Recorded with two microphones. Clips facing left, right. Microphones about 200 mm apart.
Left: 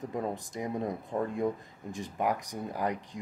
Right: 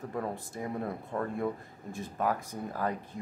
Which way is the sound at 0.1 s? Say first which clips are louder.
Left 1 dB; 15° left (ahead or behind).